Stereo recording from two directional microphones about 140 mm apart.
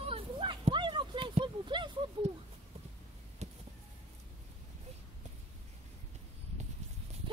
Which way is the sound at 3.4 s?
55° right (ahead or behind).